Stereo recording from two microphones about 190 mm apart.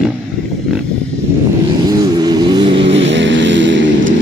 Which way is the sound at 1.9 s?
20° right (ahead or behind).